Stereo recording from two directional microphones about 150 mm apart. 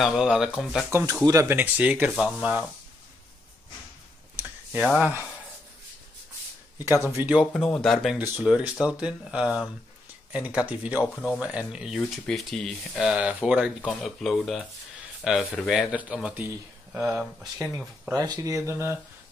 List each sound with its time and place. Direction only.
0.0 s speech: 5° right (ahead or behind)
0.8 s speech: 15° right (ahead or behind)
4.8 s speech: centre (ahead or behind)
7.1 s speech: 15° right (ahead or behind)
7.5 s speech: 5° left (ahead or behind)
18.1 s speech: 25° right (ahead or behind)